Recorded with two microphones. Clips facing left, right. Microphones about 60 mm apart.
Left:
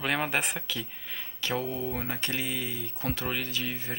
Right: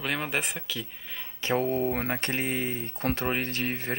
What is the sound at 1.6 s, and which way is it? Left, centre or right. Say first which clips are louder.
Speech: right 6 dB; right.